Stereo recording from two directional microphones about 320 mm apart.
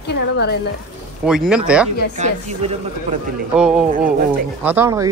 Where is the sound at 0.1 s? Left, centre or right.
Left.